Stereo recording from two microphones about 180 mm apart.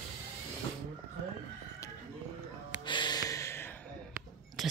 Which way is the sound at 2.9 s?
25° left (ahead or behind).